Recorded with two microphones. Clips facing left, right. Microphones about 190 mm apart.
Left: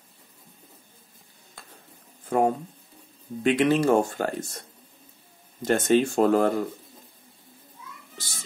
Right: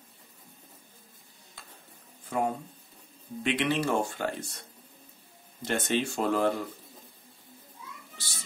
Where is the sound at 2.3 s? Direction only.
50° left (ahead or behind).